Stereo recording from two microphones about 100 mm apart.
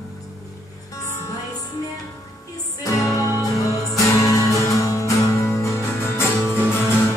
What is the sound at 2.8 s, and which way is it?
Music, 35° left (ahead or behind).